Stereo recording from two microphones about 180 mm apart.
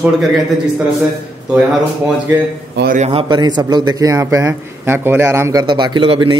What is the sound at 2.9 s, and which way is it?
Speech, 40° right (ahead or behind).